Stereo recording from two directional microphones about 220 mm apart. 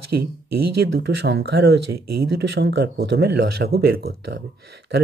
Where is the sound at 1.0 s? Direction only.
50° right (ahead or behind).